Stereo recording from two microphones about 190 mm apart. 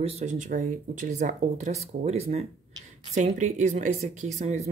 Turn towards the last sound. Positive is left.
turn(degrees=-35)  # may be behind; listen again after turning